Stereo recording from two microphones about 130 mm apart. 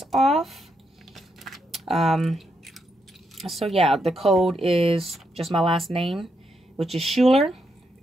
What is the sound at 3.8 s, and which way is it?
Speech, centre (ahead or behind).